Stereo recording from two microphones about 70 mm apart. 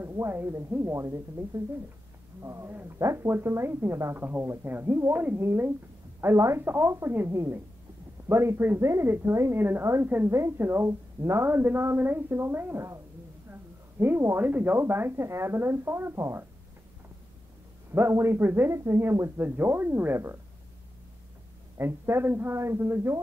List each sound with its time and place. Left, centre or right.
0.0 s a woman's voice: right
10.3 s a woman's voice: right
13.5 s a sound: right
14.8 s a woman's voice: right
17.9 s a woman's voice: right
21.7 s a woman's voice: right